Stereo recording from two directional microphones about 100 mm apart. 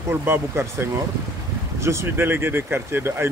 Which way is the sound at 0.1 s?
25° right (ahead or behind).